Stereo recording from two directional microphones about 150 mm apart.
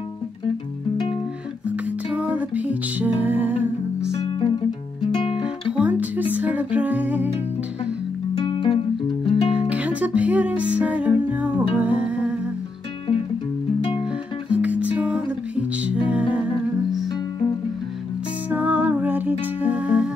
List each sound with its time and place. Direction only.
2.1 s music: 10° right (ahead or behind)
4.4 s guitar: 35° left (ahead or behind)
5.7 s music: 10° right (ahead or behind)
8.4 s music: 35° left (ahead or behind)
9.5 s music: 10° right (ahead or behind)
14.5 s music: 10° right (ahead or behind)
18.5 s music: 10° right (ahead or behind)